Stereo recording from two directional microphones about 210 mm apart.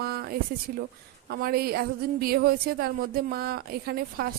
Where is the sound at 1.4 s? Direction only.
45° right (ahead or behind).